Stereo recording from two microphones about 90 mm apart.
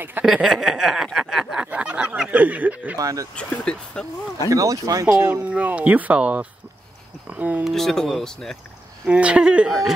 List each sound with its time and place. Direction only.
0.2 s speech: centre (ahead or behind)
3.0 s speech: 40° right (ahead or behind)
3.3 s speech: 10° left (ahead or behind)
4.5 s speech: 40° right (ahead or behind)
5.3 s speech: 15° right (ahead or behind)
7.6 s speech: 5° left (ahead or behind)
9.0 s speech: 15° right (ahead or behind)
9.7 s speech: centre (ahead or behind)